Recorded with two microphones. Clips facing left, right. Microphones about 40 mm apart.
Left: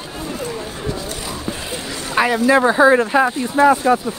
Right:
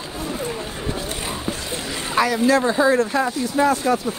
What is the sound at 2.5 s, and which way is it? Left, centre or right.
Speech, left.